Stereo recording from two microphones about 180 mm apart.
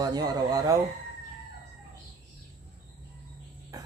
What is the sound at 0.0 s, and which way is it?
Chicken, 20° right (ahead or behind).